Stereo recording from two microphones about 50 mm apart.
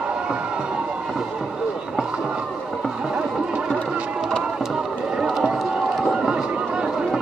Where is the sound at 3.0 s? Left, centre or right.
Centre.